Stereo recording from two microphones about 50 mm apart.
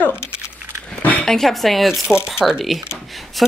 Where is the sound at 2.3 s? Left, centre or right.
Centre.